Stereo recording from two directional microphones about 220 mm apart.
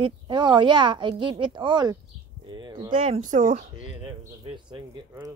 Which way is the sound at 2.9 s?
30° right (ahead or behind).